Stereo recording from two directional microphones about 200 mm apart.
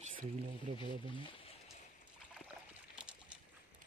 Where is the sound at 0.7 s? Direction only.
35° right (ahead or behind).